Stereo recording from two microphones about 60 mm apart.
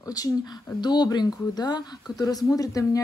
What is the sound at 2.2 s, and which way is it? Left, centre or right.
Speech, left.